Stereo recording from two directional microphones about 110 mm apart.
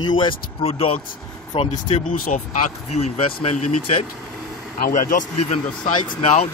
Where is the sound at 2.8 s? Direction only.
90° left.